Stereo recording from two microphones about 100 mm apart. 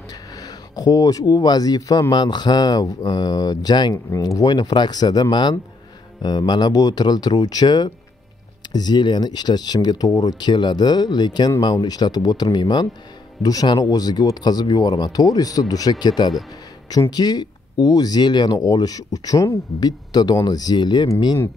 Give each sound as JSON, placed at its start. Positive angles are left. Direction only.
{"t": 0.4, "sound": "speech", "side_deg": 40}
{"t": 4.1, "sound": "speech", "side_deg": 35}